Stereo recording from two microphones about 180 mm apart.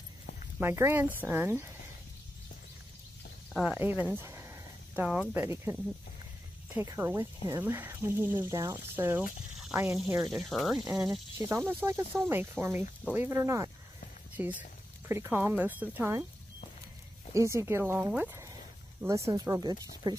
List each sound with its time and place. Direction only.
0.6 s speech: 15° right (ahead or behind)
3.5 s speech: 5° right (ahead or behind)
10.3 s speech: centre (ahead or behind)
11.3 s speech: 15° right (ahead or behind)
17.3 s speech: 15° right (ahead or behind)